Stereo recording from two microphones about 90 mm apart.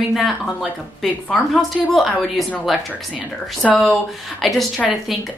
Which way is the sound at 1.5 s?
Centre (ahead or behind).